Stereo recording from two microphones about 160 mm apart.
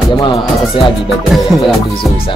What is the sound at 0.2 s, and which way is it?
Music, 30° left (ahead or behind).